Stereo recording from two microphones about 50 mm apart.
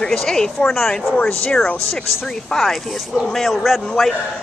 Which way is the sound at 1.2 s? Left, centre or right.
Left.